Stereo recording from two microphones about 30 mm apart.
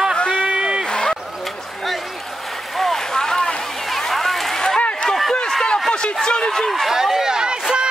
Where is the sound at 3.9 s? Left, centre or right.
Centre.